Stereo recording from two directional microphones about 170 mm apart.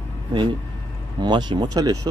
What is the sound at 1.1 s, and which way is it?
Speech, 25° right (ahead or behind).